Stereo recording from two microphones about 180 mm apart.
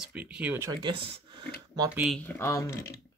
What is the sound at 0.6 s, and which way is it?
Speech, 25° right (ahead or behind).